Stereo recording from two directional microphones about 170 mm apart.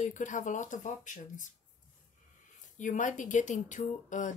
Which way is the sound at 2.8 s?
50° left (ahead or behind).